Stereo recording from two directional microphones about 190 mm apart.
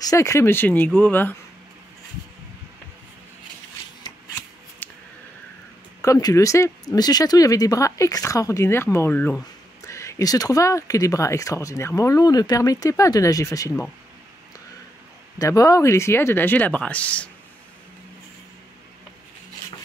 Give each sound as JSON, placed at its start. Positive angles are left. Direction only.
{"t": 0.0, "sound": "speech", "side_deg": 15}
{"t": 4.8, "sound": "a sound", "side_deg": 10}
{"t": 6.0, "sound": "speech", "side_deg": 20}
{"t": 15.3, "sound": "speech", "side_deg": 15}